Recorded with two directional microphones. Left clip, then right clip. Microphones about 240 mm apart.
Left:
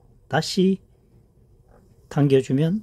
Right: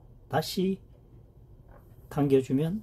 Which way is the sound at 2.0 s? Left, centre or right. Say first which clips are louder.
Left 5 dB; left.